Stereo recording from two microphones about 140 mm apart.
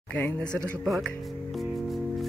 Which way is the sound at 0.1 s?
10° left (ahead or behind).